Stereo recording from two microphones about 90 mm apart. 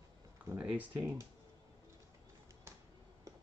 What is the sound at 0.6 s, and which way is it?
Speech, 15° right (ahead or behind).